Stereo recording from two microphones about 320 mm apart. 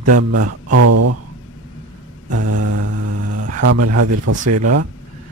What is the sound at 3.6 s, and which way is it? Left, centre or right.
Speech, right.